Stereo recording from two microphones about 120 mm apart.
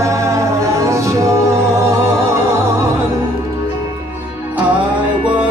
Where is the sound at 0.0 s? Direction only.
25° right (ahead or behind).